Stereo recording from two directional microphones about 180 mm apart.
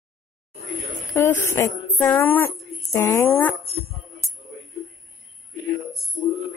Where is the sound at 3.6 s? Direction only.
35° right (ahead or behind).